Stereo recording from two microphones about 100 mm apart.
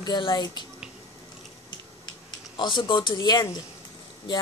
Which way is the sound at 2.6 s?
55° left (ahead or behind).